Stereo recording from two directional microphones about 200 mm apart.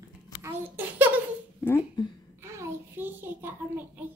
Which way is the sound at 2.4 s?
10° right (ahead or behind).